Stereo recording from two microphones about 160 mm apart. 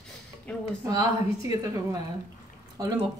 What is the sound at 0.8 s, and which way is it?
Speech, 20° right (ahead or behind).